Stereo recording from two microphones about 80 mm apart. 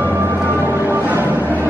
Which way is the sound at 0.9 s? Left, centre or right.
Right.